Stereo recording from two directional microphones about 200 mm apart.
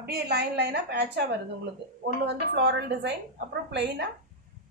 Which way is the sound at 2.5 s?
60° right (ahead or behind).